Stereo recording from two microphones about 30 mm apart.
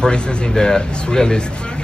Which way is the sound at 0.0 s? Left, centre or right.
Left.